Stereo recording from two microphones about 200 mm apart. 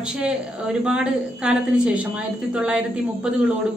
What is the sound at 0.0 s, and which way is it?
A woman's voice, 5° right (ahead or behind).